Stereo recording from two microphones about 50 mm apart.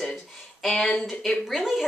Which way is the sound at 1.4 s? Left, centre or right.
Centre.